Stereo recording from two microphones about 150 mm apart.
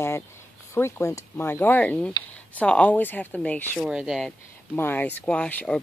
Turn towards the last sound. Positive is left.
turn(degrees=10)  # may be behind; listen again after turning